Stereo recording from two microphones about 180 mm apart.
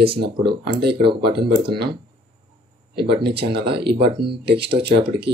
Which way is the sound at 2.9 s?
65° right (ahead or behind).